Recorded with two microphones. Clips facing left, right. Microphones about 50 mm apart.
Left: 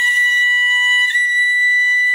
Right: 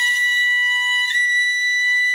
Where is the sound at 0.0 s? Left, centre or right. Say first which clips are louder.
Left 4 dB; left.